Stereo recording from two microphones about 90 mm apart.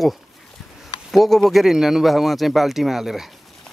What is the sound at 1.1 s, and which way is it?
Speech, centre (ahead or behind).